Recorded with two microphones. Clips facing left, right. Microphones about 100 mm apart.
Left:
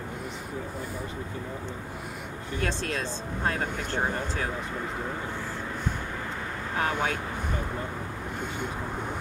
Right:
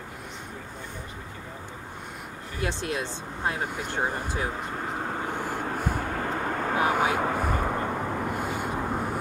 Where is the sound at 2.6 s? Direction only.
15° right (ahead or behind).